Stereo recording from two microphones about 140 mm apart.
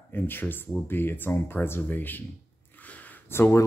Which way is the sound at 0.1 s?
15° left (ahead or behind).